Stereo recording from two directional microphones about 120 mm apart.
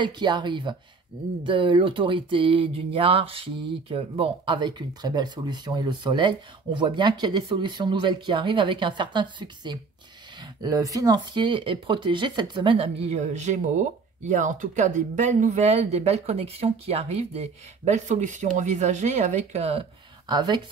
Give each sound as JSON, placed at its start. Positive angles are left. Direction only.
{"t": 0.0, "sound": "speech", "side_deg": -40}
{"t": 13.1, "sound": "speech", "side_deg": -75}
{"t": 20.2, "sound": "speech", "side_deg": -40}